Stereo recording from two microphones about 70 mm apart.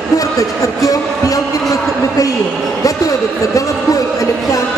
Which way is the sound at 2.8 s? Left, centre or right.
Left.